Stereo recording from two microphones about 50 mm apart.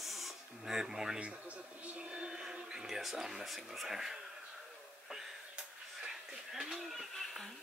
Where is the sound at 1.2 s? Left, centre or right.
Right; by 3.4 s centre.